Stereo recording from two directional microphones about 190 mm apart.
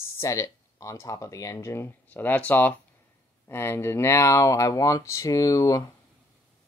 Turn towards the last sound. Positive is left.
turn(degrees=20)  # may be behind; listen again after turning